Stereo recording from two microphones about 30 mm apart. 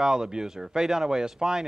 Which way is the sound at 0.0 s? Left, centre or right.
Right.